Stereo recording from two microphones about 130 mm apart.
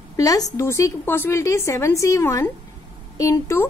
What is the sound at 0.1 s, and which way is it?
A woman's voice, 25° left (ahead or behind).